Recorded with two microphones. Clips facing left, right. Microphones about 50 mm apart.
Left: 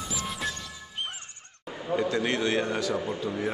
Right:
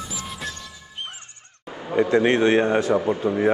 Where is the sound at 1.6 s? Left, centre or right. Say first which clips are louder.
Right 2 dB; centre.